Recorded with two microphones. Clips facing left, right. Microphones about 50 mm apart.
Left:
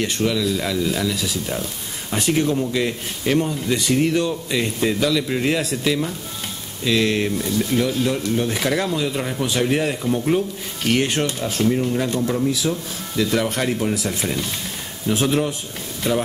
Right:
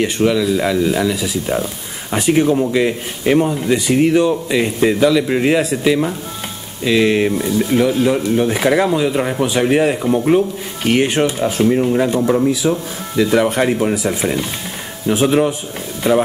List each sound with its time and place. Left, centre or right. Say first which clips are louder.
0.0 s speech: right 6 dB; centre
1.5 s speech: right 7 dB; right
2.1 s speech: right 6 dB; centre